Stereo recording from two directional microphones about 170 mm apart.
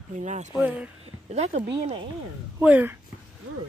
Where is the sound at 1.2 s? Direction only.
40° right (ahead or behind).